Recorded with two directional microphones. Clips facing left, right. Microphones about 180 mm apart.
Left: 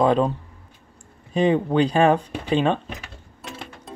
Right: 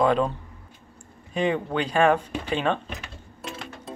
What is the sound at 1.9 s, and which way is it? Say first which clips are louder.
Speech: left 2 dB; 40° left (ahead or behind).